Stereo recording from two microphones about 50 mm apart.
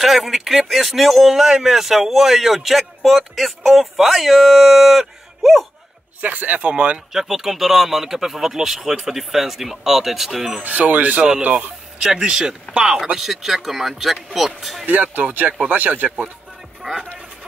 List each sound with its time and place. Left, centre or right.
0.0 s speech: centre
6.2 s speech: right
7.1 s speech: centre
10.6 s speech: right
12.0 s speech: centre
13.0 s speech: centre
14.9 s speech: right
16.8 s speech: centre